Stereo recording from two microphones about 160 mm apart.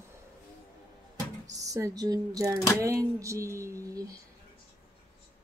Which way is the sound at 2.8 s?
20° right (ahead or behind).